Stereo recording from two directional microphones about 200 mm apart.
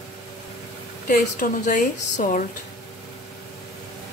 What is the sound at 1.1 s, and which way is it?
A woman's voice, 40° left (ahead or behind).